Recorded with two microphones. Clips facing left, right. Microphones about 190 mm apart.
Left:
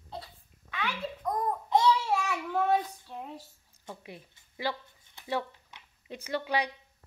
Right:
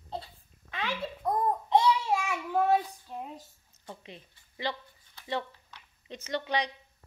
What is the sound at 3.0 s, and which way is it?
Speech, 10° right (ahead or behind).